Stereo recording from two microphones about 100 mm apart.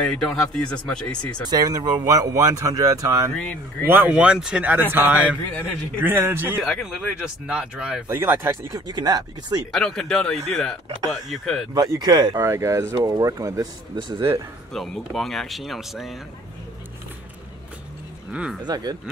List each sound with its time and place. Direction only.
0.1 s speech: 5° left (ahead or behind)
1.5 s speech: 40° right (ahead or behind)
3.8 s a man's voice: 20° right (ahead or behind)
6.6 s speech: centre (ahead or behind)
8.1 s a man's voice: 25° right (ahead or behind)
8.7 s speech: 40° right (ahead or behind)
9.7 s speech: 5° left (ahead or behind)
11.7 s speech: 40° right (ahead or behind)
12.4 s a man's voice: 30° right (ahead or behind)
13.9 s speech: 55° right (ahead or behind)
14.7 s speech: 5° left (ahead or behind)
18.6 s speech: 45° right (ahead or behind)